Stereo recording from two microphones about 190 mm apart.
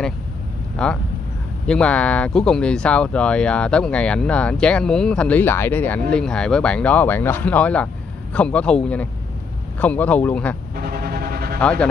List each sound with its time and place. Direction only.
0.8 s speech: 5° left (ahead or behind)
10.8 s a sound: 50° right (ahead or behind)
11.6 s speech: 5° left (ahead or behind)